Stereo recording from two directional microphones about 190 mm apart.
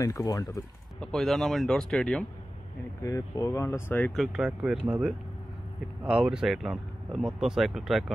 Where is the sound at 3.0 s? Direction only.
15° left (ahead or behind).